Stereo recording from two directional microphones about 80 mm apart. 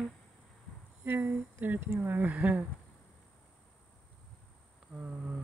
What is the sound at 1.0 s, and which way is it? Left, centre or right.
Speech, right.